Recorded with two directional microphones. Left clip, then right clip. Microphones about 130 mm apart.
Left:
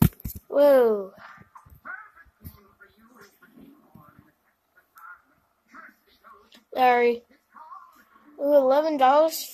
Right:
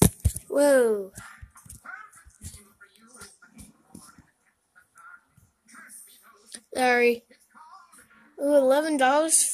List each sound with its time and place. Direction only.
0.6 s speech: 30° right (ahead or behind)
6.5 s speech: 40° right (ahead or behind)
8.4 s speech: 40° right (ahead or behind)